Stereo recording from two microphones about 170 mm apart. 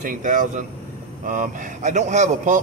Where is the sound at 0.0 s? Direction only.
50° right (ahead or behind).